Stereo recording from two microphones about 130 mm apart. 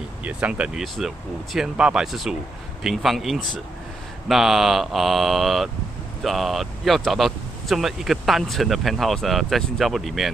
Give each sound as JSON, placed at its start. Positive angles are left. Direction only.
{"t": 0.2, "sound": "speech", "side_deg": -10}